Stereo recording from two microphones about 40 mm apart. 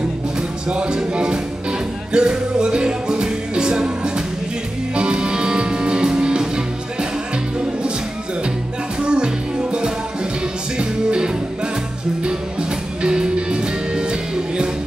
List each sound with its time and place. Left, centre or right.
0.7 s music: right
9.0 s music: right
13.0 s music: right